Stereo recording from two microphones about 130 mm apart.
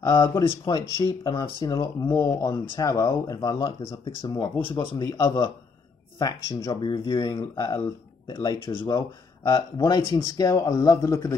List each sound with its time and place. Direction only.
0.0 s speech: 30° left (ahead or behind)
3.5 s speech: 45° left (ahead or behind)
4.4 s speech: 30° left (ahead or behind)